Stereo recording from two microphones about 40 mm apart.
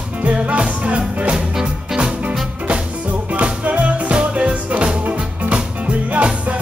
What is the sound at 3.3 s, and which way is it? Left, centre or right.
Music, right.